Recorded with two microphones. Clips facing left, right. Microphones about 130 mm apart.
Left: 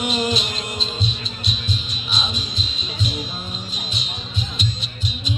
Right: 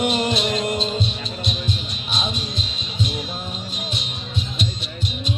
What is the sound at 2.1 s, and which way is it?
Music, 55° right (ahead or behind).